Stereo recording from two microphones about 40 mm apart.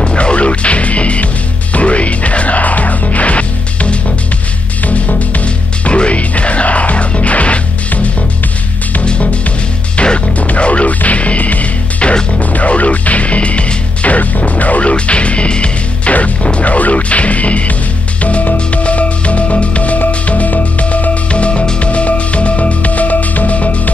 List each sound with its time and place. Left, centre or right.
0.0 s music: left
9.9 s music: left